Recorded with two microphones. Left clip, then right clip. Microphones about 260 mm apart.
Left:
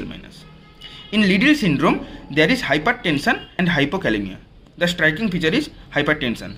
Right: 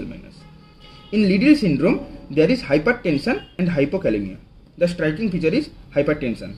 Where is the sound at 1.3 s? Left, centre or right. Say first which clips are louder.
Right 1 dB; centre.